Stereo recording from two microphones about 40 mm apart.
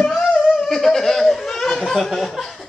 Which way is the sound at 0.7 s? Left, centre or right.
Centre.